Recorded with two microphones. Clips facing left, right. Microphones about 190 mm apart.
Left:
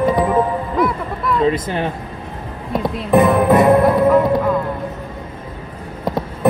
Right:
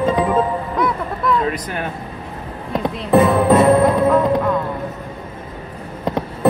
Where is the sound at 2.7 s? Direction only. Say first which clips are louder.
Even; 10° left (ahead or behind).